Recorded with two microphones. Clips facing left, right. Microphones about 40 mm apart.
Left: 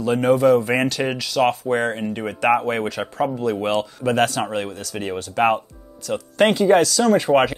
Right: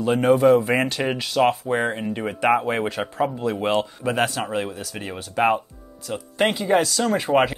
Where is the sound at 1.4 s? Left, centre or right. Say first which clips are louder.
Left 1 dB; centre.